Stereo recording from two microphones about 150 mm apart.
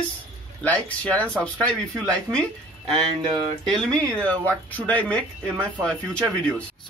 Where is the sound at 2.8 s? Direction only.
30° right (ahead or behind).